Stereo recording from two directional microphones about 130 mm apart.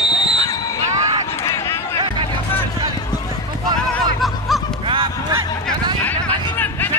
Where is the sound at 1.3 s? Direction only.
20° left (ahead or behind).